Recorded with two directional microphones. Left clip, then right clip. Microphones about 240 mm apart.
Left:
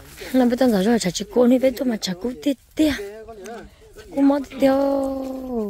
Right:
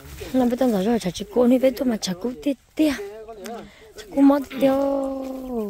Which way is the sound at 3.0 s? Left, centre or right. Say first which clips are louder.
Left 1 dB; left.